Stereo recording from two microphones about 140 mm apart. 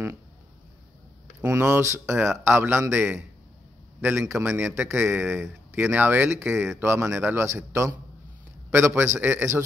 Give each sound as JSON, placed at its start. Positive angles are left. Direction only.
{"t": 1.6, "sound": "a man's voice", "side_deg": -15}